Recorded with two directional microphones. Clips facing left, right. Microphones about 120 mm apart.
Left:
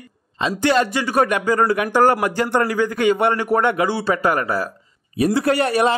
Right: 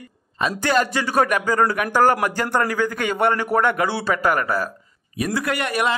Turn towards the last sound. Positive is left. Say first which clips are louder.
# left 6 dB
turn(degrees=30)  # may be behind; listen again after turning